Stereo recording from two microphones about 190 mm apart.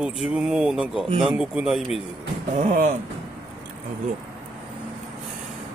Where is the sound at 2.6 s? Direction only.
40° right (ahead or behind).